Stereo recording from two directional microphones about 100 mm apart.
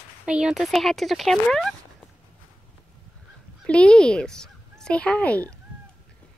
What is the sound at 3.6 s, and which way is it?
Speech, 10° left (ahead or behind).